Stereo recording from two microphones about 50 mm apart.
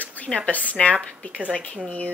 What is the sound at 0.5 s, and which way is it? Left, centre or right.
Speech, left.